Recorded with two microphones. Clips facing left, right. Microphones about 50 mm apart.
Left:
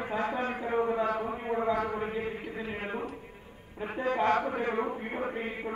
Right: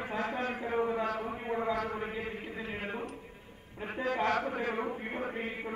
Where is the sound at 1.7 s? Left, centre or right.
Left.